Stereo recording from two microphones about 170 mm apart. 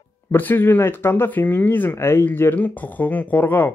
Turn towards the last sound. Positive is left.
turn(degrees=10)  # may be behind; listen again after turning